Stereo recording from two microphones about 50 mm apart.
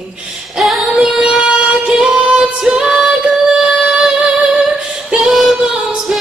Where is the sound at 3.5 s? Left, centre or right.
Centre.